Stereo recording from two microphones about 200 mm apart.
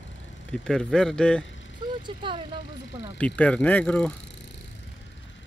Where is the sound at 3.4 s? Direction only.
5° left (ahead or behind).